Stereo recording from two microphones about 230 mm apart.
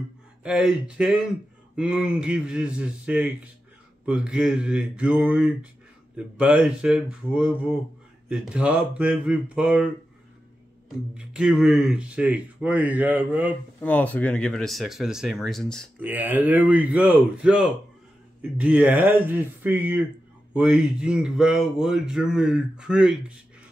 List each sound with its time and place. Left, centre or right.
0.4 s speech: centre
11.1 s speech: centre
13.7 s speech: centre